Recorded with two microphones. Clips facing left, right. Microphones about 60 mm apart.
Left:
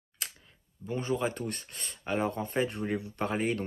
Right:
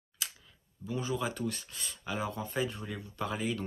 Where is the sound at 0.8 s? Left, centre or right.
Left.